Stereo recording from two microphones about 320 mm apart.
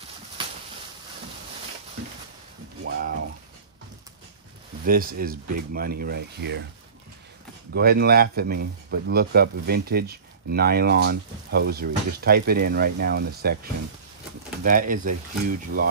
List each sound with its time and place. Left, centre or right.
2.8 s a sound: right
4.8 s speech: right
7.7 s speech: right